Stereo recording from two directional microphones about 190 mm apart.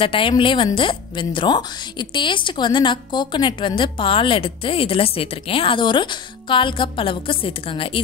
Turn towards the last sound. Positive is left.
turn(degrees=30)  # may be behind; listen again after turning